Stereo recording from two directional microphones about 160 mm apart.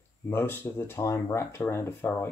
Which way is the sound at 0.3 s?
15° left (ahead or behind).